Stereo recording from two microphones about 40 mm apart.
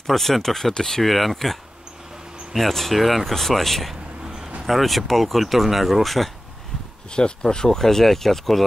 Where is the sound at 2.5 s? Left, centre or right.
Centre.